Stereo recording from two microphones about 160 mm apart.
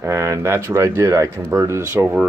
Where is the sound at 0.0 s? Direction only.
20° right (ahead or behind).